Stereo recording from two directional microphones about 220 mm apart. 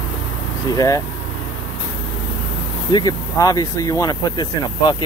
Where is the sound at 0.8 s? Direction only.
15° left (ahead or behind).